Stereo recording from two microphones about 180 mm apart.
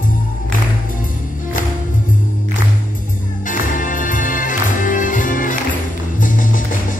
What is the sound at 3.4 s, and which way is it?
Music, 45° left (ahead or behind).